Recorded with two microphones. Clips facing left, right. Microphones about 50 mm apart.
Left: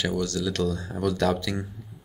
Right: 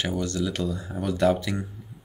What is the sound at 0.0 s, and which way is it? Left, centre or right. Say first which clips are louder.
Speech: even; right.